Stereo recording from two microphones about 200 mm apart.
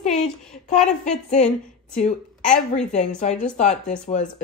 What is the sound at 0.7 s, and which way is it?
Speech, 35° left (ahead or behind).